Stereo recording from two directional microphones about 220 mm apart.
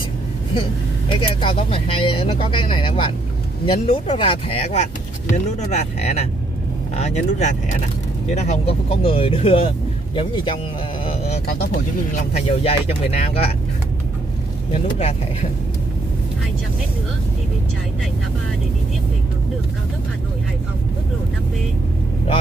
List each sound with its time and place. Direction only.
0.6 s speech: 25° left (ahead or behind)
12.4 s speech: 30° left (ahead or behind)